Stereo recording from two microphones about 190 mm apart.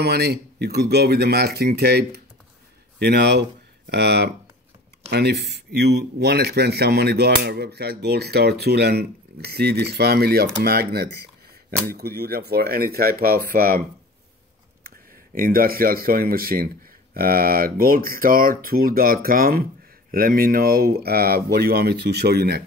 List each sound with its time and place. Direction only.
0.0 s speech: 60° right (ahead or behind)
15.3 s speech: 50° right (ahead or behind)